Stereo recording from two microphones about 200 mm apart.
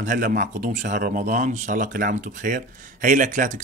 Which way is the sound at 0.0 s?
40° right (ahead or behind).